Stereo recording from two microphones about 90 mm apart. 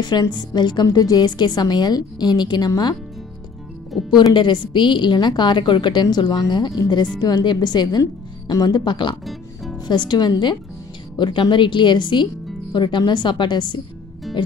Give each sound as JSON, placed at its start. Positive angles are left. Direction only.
{"t": 0.0, "sound": "a woman's voice", "side_deg": 55}
{"t": 0.8, "sound": "a woman's voice", "side_deg": 45}
{"t": 4.1, "sound": "a woman's voice", "side_deg": 55}
{"t": 9.2, "sound": "music", "side_deg": 0}
{"t": 9.8, "sound": "a woman's voice", "side_deg": 55}
{"t": 14.3, "sound": "music", "side_deg": 0}